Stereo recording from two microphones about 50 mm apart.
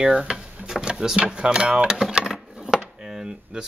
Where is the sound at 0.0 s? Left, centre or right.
Centre.